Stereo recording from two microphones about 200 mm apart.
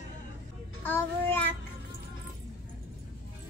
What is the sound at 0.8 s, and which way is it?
Child singing, 10° left (ahead or behind).